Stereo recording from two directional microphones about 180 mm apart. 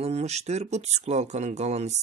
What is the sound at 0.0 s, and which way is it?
Speech, 35° right (ahead or behind).